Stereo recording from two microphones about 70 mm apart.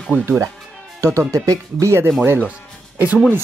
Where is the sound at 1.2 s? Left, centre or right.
Right.